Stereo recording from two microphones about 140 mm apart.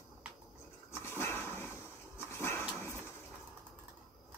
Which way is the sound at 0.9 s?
15° left (ahead or behind).